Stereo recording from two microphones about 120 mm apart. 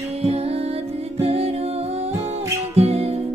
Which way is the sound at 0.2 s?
55° right (ahead or behind).